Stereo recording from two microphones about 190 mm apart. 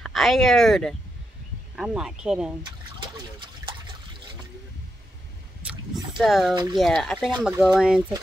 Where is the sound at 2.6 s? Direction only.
25° right (ahead or behind).